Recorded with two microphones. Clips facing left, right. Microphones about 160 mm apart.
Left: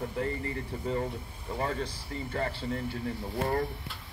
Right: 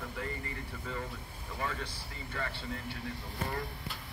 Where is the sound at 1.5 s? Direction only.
35° left (ahead or behind).